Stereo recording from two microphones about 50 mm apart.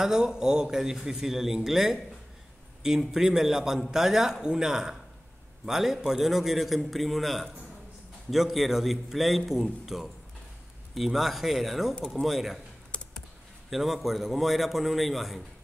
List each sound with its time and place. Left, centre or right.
0.0 s a man's voice: centre
12.9 s computer keyboard: left
13.7 s a man's voice: centre